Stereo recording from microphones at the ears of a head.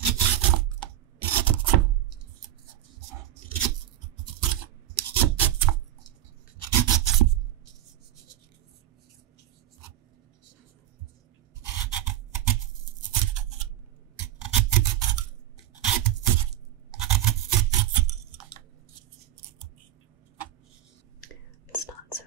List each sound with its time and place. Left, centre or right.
0.1 s a sound: right
6.6 s rub: right
11.6 s a sound: right
14.1 s filing: right
15.8 s scratch: right
18.9 s scissors: right